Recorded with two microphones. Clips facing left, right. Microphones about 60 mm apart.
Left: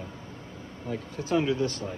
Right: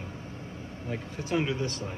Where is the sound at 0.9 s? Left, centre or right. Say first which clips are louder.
Left 3 dB; right.